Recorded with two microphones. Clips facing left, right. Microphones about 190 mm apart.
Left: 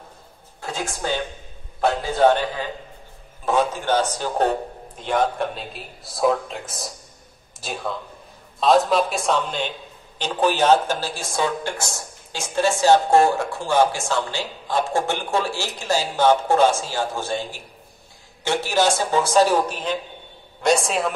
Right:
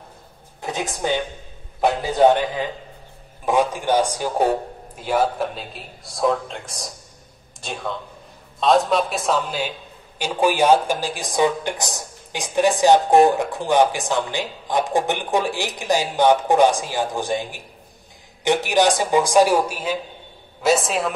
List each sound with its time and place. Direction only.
0.6 s a woman's voice: 20° right (ahead or behind); by 21.1 s centre (ahead or behind)